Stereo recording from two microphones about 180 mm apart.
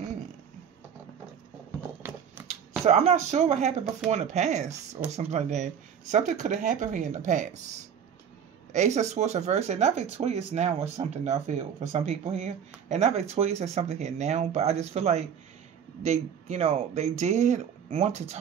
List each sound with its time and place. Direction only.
2.8 s speech: 35° right (ahead or behind)
8.7 s speech: 40° right (ahead or behind)